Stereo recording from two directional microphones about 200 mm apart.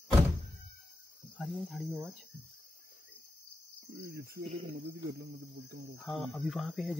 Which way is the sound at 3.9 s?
55° right (ahead or behind).